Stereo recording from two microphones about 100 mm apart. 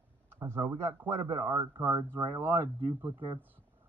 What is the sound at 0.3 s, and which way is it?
Speech, 25° right (ahead or behind).